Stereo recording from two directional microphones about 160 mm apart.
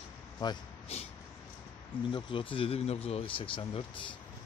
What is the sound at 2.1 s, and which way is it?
Speech, 30° left (ahead or behind).